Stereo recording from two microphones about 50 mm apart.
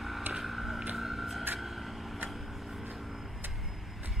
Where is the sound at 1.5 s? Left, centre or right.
Centre.